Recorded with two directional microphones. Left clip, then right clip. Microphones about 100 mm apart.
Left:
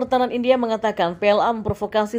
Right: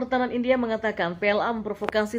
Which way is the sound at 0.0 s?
40° left (ahead or behind).